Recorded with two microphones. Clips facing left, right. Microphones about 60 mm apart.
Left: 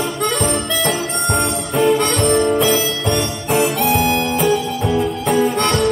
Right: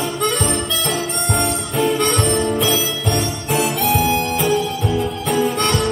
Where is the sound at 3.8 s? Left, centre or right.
Left.